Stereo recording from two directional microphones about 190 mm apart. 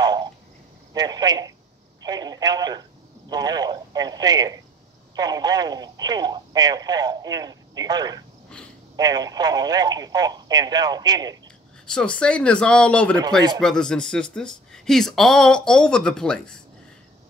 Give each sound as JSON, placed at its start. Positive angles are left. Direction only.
{"t": 0.0, "sound": "a sound", "side_deg": -20}
{"t": 0.9, "sound": "speech", "side_deg": -20}
{"t": 11.8, "sound": "speech", "side_deg": 5}